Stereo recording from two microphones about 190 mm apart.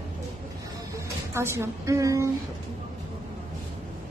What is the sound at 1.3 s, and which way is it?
Speech, 15° right (ahead or behind).